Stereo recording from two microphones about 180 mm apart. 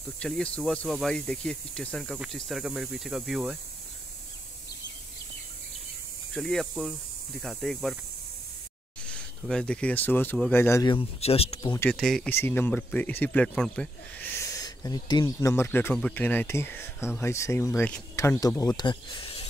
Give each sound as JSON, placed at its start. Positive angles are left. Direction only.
{"t": 0.2, "sound": "speech", "side_deg": 5}
{"t": 6.3, "sound": "speech", "side_deg": 0}
{"t": 9.0, "sound": "speech", "side_deg": 5}
{"t": 11.6, "sound": "speech", "side_deg": 20}
{"t": 11.9, "sound": "speech", "side_deg": 0}
{"t": 12.3, "sound": "speech", "side_deg": 15}
{"t": 14.4, "sound": "speech", "side_deg": 20}